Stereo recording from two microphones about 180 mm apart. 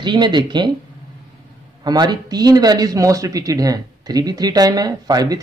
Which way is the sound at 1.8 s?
25° right (ahead or behind).